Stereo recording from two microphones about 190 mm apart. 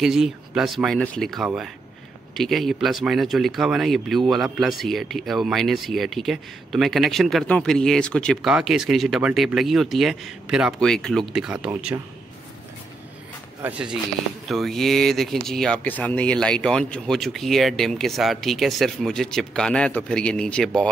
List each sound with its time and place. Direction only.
0.0 s speech: 5° right (ahead or behind)
13.6 s speech: 5° right (ahead or behind)